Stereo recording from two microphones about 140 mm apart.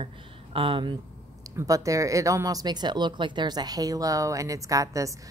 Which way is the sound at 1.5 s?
25° right (ahead or behind).